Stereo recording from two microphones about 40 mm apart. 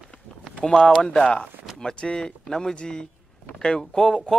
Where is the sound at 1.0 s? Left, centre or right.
Left.